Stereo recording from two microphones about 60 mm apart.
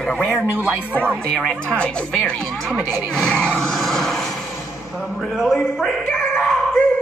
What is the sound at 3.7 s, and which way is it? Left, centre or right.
Vehicle, centre.